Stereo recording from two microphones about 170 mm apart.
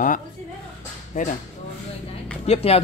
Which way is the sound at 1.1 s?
50° left (ahead or behind).